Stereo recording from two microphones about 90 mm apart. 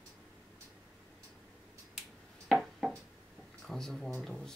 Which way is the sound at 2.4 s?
Centre (ahead or behind).